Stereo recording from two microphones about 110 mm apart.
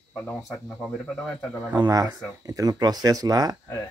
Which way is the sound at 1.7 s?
35° right (ahead or behind).